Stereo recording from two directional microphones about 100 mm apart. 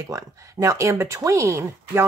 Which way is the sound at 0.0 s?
30° right (ahead or behind).